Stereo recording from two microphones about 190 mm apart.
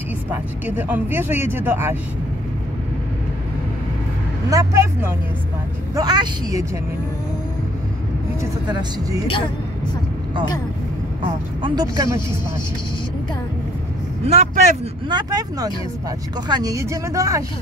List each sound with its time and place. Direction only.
0.3 s speech: 10° right (ahead or behind)
4.5 s a woman's voice: 15° right (ahead or behind)
8.4 s speech: 15° right (ahead or behind)
11.6 s a woman's voice: 20° right (ahead or behind)
14.2 s speech: 35° right (ahead or behind)
15.0 s a woman's voice: 20° right (ahead or behind)